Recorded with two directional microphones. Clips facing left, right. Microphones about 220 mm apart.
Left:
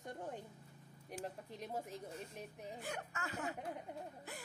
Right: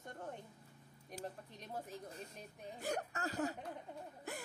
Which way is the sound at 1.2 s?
10° left (ahead or behind).